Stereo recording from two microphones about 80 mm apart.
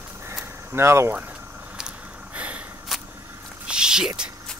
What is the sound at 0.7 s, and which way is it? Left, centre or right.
Speech, right.